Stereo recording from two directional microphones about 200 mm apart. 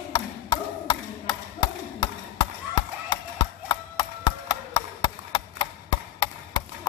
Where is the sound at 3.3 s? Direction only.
20° left (ahead or behind).